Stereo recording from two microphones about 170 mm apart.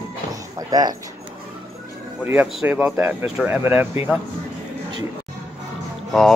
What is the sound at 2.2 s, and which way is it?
Speech, 10° right (ahead or behind).